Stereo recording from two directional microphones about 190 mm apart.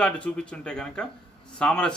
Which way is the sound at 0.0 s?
5° left (ahead or behind).